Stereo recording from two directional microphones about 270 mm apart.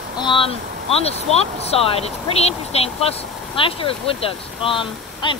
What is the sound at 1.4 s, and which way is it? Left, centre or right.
Speech, left.